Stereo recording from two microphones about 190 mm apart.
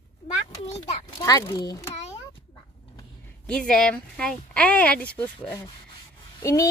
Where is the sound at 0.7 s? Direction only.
20° left (ahead or behind).